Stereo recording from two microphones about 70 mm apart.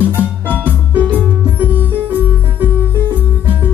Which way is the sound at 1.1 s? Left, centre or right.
Right.